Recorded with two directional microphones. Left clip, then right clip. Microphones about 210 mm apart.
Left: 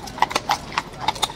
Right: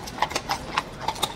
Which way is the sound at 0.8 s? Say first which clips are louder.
Left 2 dB; 20° left (ahead or behind).